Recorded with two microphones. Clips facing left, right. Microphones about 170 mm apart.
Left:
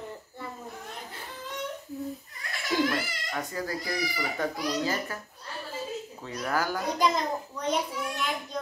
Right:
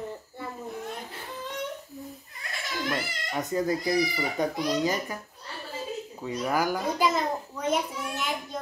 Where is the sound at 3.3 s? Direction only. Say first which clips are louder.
Right 8 dB; 20° right (ahead or behind).